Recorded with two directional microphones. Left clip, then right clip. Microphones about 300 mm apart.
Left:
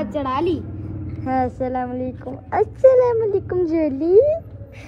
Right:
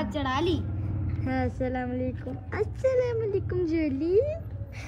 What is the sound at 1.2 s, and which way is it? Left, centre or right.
Speech, centre.